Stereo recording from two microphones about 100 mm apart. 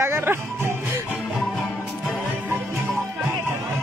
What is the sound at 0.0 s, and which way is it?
Music, 25° right (ahead or behind).